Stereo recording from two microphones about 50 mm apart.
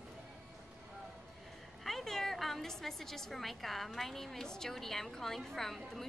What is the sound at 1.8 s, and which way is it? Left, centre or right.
A woman's voice, centre.